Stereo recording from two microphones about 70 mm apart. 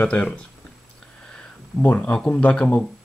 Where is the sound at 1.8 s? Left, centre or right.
Left.